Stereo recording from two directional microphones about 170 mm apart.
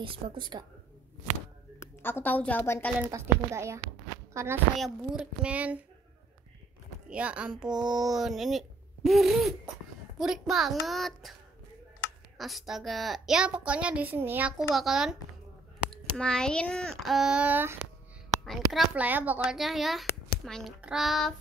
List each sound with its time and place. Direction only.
0.0 s a woman's voice: 30° right (ahead or behind)
2.0 s a woman's voice: 10° left (ahead or behind)
3.1 s speech: 15° right (ahead or behind)
4.7 s a child's voice: centre (ahead or behind)
7.1 s a child's voice: 5° right (ahead or behind)
12.4 s a child's voice: centre (ahead or behind)
14.7 s a child's voice: centre (ahead or behind)
18.4 s a child's voice: centre (ahead or behind)